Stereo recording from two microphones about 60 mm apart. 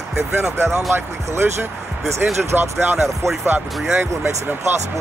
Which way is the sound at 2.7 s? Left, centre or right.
Right.